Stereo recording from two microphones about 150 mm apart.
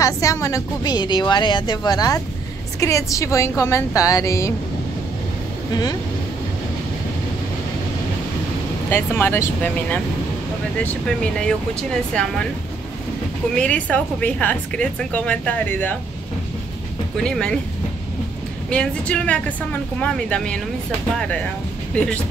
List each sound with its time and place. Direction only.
0.0 s a woman's voice: 20° left (ahead or behind)
5.7 s a woman's voice: 25° left (ahead or behind)
8.9 s speech: 15° left (ahead or behind)
13.6 s speech: 10° left (ahead or behind)
17.2 s speech: 5° left (ahead or behind)
18.7 s speech: 5° left (ahead or behind)
21.9 s speech: 5° left (ahead or behind)